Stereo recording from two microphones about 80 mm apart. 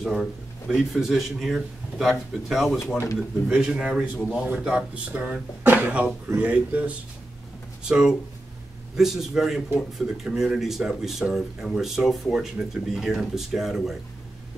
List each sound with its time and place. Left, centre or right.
0.0 s a man's voice: centre